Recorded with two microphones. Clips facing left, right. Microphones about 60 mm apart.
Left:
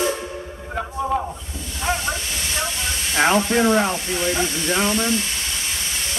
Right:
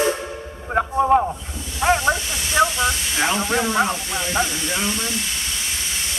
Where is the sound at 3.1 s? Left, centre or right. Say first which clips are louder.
Left 4 dB; left.